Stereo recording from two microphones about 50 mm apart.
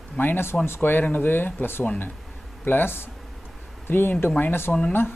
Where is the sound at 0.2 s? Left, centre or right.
Left.